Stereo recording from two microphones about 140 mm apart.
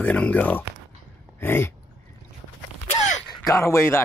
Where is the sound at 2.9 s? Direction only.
55° left (ahead or behind).